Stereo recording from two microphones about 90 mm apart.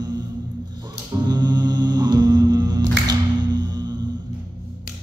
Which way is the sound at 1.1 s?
50° right (ahead or behind).